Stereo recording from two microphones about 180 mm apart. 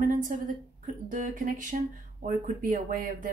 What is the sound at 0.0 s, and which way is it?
A woman's voice, 45° right (ahead or behind).